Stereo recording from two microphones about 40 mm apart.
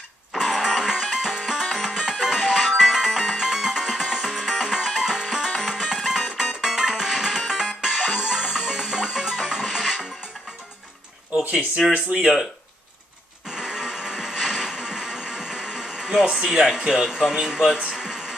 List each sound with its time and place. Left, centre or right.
0.3 s dog: centre
0.6 s music: centre
11.9 s speech: right
13.5 s music: centre
16.3 s speech: centre
17.9 s a sound: centre